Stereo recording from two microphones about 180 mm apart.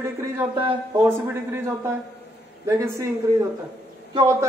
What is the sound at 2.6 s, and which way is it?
Speech, 15° right (ahead or behind).